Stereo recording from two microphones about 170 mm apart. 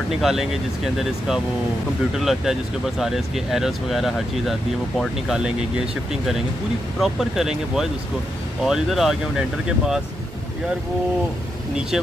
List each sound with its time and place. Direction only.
0.2 s speech: centre (ahead or behind)
7.0 s speech: centre (ahead or behind)